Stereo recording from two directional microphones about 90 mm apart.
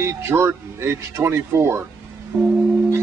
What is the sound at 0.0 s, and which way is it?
Speech, 30° right (ahead or behind).